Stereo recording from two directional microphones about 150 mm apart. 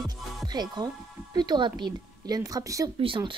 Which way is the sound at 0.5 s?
30° right (ahead or behind).